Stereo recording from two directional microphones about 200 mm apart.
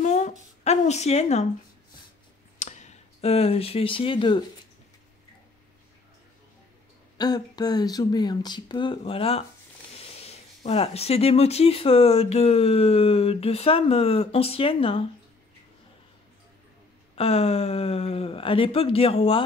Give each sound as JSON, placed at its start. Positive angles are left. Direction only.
{"t": 0.0, "sound": "a sound", "side_deg": 40}
{"t": 2.6, "sound": "speech", "side_deg": 35}
{"t": 7.2, "sound": "speech", "side_deg": 20}
{"t": 17.1, "sound": "speech", "side_deg": 30}